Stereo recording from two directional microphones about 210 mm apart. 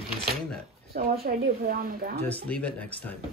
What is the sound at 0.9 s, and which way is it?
Speech, 45° right (ahead or behind).